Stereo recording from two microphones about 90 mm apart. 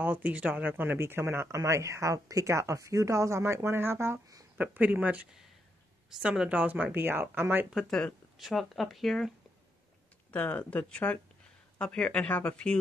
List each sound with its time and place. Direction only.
0.0 s speech: 20° right (ahead or behind)
7.9 s speech: centre (ahead or behind)
10.3 s speech: 20° left (ahead or behind)